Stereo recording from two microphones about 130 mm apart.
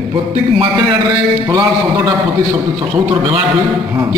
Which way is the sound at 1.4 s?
30° right (ahead or behind).